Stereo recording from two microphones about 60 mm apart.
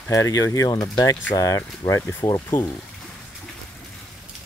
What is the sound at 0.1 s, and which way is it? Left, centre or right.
Speech, left.